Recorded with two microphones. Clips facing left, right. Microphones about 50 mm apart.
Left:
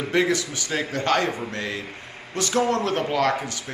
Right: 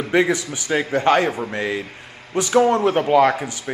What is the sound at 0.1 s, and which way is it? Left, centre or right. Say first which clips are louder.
A man's voice: right 4 dB; centre.